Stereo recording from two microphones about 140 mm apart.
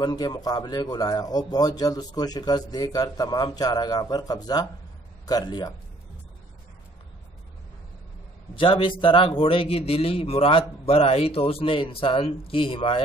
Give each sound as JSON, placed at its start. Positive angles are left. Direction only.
{"t": 0.0, "sound": "a man's voice", "side_deg": 30}
{"t": 8.5, "sound": "a man's voice", "side_deg": 35}